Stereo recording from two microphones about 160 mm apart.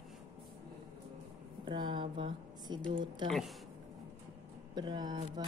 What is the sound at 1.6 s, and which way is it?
A woman's voice, 30° right (ahead or behind).